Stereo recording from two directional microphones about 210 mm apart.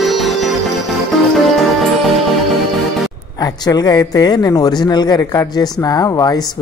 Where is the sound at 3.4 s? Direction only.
20° left (ahead or behind).